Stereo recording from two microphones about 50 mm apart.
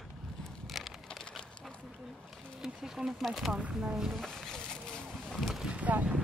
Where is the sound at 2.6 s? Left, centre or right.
Centre.